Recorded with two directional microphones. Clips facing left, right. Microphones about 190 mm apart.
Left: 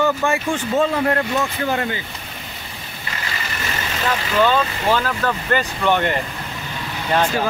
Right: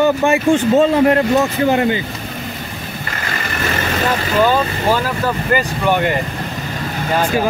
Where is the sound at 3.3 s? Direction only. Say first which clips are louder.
Right 7 dB; 55° right (ahead or behind).